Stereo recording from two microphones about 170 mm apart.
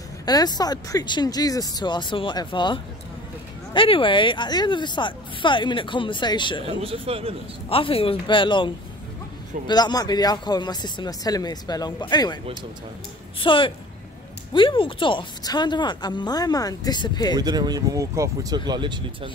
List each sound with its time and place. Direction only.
0.2 s speech: 25° left (ahead or behind)
6.6 s speech: 35° right (ahead or behind)
7.7 s speech: 35° left (ahead or behind)
13.4 s speech: 30° left (ahead or behind)
17.4 s speech: 25° right (ahead or behind)